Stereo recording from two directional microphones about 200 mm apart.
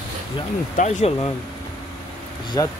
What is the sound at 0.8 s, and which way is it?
Speech, 35° left (ahead or behind).